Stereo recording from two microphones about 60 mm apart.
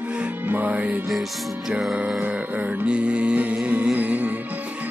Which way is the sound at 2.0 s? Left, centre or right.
Centre.